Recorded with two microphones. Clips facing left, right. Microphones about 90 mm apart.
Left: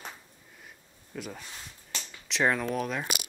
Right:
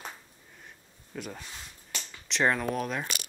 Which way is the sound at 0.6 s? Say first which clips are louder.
Right 1 dB; centre (ahead or behind).